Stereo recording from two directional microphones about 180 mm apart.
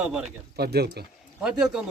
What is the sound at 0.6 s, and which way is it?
Speech, 65° right (ahead or behind).